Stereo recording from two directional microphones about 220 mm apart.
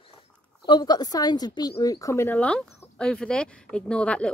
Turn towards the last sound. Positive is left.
turn(degrees=5)  # may be behind; listen again after turning